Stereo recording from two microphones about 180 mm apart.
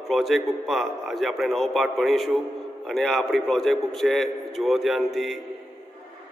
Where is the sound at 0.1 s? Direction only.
Centre (ahead or behind).